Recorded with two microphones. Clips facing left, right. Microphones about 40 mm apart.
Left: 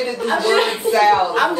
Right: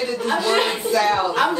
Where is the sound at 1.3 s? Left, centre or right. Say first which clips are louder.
Left 2 dB; centre.